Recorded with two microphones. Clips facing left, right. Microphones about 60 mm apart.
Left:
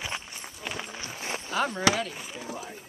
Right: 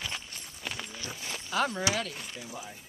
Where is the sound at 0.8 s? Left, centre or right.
Left.